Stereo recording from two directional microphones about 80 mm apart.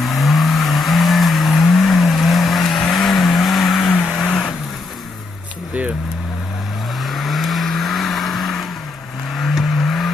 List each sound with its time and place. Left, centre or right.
0.0 s vehicle: centre
7.0 s vehicle: centre